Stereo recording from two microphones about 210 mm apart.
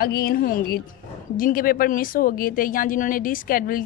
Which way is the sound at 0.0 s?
45° left (ahead or behind).